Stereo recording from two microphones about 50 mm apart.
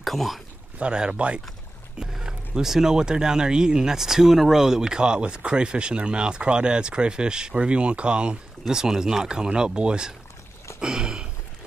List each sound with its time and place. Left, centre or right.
0.0 s speech: centre
0.7 s speech: centre
8.6 s speech: centre
10.8 s a sound: centre